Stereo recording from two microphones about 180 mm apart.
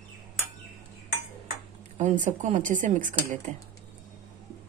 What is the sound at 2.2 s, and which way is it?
Speech, 45° right (ahead or behind).